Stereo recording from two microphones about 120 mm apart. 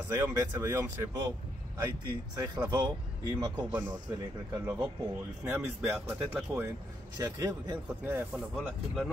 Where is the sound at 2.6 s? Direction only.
25° right (ahead or behind).